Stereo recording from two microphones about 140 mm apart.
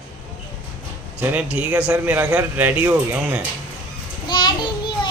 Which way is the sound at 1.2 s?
10° right (ahead or behind).